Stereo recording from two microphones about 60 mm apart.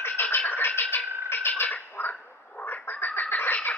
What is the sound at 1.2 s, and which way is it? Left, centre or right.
Bird, left.